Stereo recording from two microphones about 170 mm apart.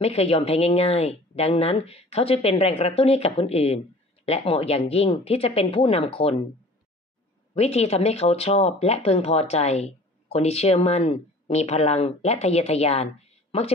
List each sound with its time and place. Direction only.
0.0 s speech: 35° left (ahead or behind)
7.5 s speech: 40° left (ahead or behind)